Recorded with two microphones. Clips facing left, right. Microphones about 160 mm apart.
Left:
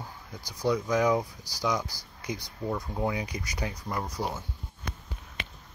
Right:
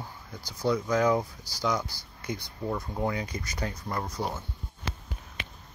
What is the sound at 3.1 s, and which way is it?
Speech, 15° left (ahead or behind).